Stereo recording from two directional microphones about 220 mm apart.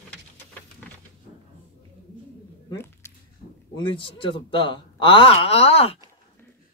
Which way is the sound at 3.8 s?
20° left (ahead or behind).